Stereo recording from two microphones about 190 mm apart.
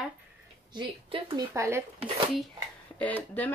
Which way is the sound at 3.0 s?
10° left (ahead or behind).